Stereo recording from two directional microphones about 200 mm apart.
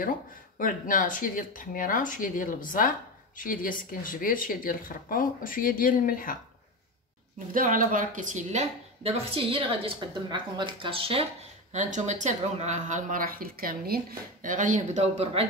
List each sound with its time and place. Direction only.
0.6 s speech: 45° left (ahead or behind)
7.5 s a woman's voice: 40° right (ahead or behind)
11.7 s speech: 40° right (ahead or behind)